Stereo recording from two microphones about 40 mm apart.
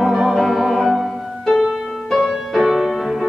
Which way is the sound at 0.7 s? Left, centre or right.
Centre.